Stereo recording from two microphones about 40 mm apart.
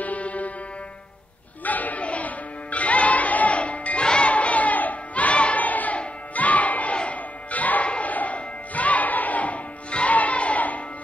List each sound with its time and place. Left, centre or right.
0.0 s music: left
1.6 s music: left
4.0 s music: left
4.3 s crowd: left
5.6 s a sound: left
5.9 s music: left